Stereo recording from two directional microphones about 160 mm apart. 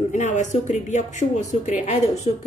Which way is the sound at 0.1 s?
50° left (ahead or behind).